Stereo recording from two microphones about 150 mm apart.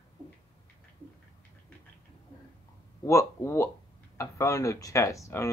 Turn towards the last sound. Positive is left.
turn(degrees=20)  # may be behind; listen again after turning